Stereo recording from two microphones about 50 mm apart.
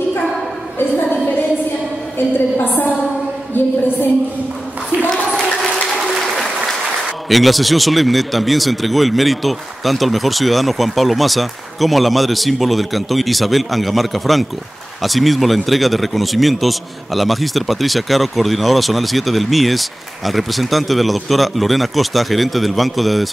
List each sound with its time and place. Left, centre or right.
2.1 s a woman's voice: left
5.5 s applause: centre
7.2 s speech: centre